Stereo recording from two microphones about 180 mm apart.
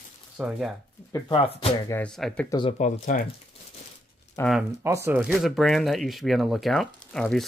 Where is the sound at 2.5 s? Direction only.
25° left (ahead or behind).